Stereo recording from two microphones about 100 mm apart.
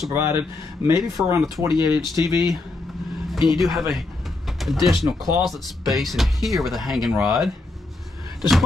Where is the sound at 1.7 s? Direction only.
50° left (ahead or behind).